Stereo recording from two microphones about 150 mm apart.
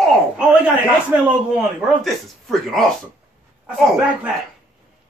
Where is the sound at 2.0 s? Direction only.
Centre (ahead or behind).